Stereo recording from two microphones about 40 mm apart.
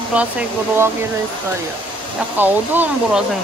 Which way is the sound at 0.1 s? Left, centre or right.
Right.